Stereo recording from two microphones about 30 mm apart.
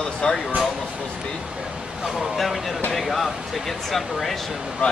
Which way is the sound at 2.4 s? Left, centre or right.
Centre.